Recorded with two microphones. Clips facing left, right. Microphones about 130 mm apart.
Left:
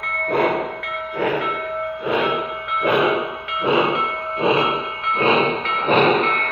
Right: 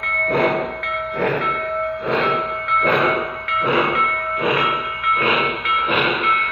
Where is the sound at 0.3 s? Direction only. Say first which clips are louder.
Right 1 dB; centre (ahead or behind).